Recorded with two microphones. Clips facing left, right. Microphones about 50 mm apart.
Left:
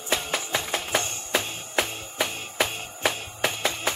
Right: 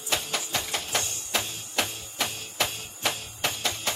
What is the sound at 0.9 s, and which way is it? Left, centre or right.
Music, left.